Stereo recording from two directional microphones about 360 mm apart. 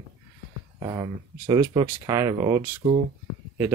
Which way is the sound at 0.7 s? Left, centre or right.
Centre.